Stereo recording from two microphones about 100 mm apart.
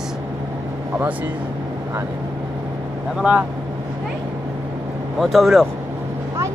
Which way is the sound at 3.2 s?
10° right (ahead or behind).